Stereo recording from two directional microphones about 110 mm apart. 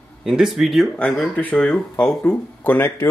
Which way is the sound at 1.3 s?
10° left (ahead or behind).